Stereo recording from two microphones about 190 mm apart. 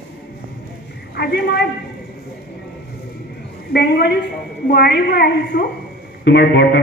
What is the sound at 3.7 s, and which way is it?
A man's voice, 55° left (ahead or behind).